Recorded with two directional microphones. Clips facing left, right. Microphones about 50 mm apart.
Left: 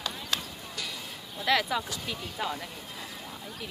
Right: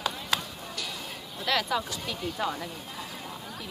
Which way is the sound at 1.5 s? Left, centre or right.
Centre.